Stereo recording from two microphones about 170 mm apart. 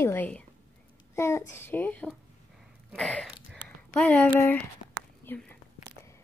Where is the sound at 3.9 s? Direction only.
10° left (ahead or behind).